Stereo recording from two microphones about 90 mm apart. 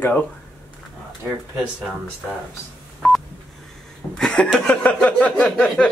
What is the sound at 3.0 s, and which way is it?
Telephone dialing, centre (ahead or behind).